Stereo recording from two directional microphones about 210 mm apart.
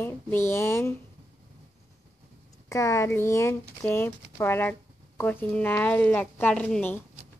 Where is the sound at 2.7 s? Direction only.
15° left (ahead or behind).